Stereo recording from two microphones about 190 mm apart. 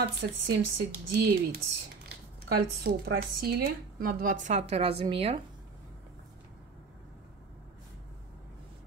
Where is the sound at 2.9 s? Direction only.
50° right (ahead or behind).